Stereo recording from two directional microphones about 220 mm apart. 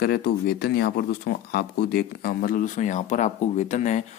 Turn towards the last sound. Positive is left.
turn(degrees=30)  # may be behind; listen again after turning